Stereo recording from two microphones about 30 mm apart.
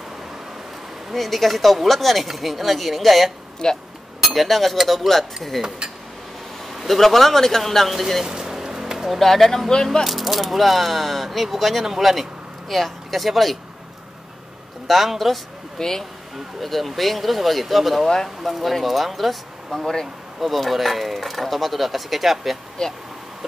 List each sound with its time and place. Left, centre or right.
1.1 s speech: centre
3.6 s speech: left
4.3 s speech: centre
6.7 s speech: centre
8.3 s vehicle: centre
9.2 s speech: centre
12.6 s speech: centre
14.9 s speech: centre
15.8 s speech: centre
16.6 s speech: centre
18.0 s speech: centre
18.5 s speech: centre
22.8 s speech: left